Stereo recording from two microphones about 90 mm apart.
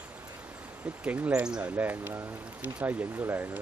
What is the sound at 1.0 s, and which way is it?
Speech, 15° right (ahead or behind).